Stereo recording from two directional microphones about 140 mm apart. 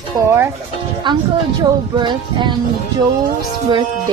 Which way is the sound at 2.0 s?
35° right (ahead or behind).